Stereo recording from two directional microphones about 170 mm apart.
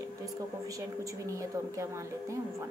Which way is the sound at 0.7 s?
20° right (ahead or behind).